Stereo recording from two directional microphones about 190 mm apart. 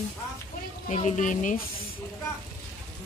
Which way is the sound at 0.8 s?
40° left (ahead or behind).